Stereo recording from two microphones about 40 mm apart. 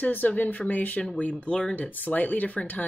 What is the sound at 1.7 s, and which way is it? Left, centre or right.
Speech, left.